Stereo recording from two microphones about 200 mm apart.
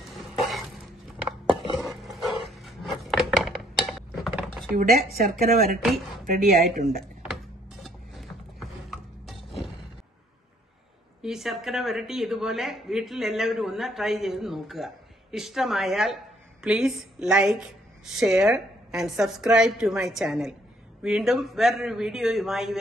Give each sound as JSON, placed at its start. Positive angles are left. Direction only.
{"t": 0.1, "sound": "a sound", "side_deg": 0}
{"t": 1.8, "sound": "a sound", "side_deg": 0}
{"t": 4.7, "sound": "speech", "side_deg": -45}
{"t": 5.9, "sound": "speech", "side_deg": 0}
{"t": 6.3, "sound": "speech", "side_deg": -40}
{"t": 7.8, "sound": "music", "side_deg": 0}
{"t": 11.2, "sound": "speech", "side_deg": 0}